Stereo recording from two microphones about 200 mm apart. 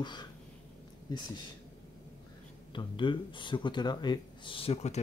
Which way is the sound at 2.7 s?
25° left (ahead or behind).